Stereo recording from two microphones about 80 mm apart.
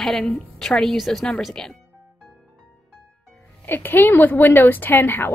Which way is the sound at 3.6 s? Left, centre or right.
Left.